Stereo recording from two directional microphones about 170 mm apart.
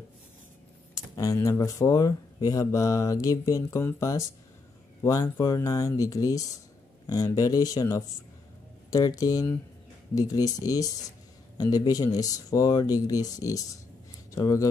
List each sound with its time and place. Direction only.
0.9 s speech: 20° left (ahead or behind)